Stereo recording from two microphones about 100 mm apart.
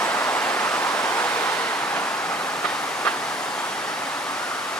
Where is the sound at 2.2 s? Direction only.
15° left (ahead or behind).